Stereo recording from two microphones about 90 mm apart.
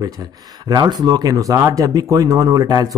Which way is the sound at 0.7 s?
45° right (ahead or behind).